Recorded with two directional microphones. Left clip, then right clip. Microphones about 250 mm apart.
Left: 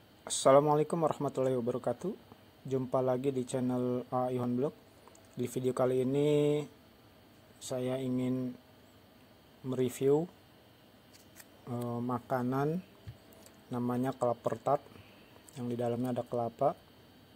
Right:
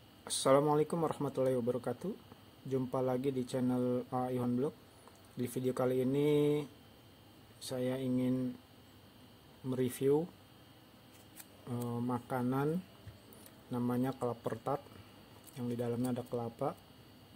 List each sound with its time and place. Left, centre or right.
0.2 s speech: centre
9.7 s speech: centre
11.6 s speech: centre